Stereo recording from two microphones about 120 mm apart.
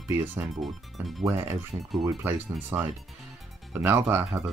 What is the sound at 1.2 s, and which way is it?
Speech, 25° right (ahead or behind).